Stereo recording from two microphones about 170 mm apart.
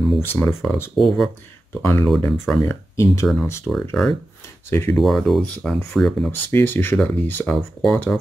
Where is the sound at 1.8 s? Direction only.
15° left (ahead or behind).